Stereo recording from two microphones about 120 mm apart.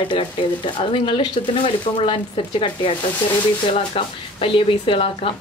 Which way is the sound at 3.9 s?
50° left (ahead or behind).